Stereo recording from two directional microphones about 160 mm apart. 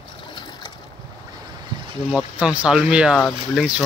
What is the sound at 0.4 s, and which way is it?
Boat, 25° left (ahead or behind).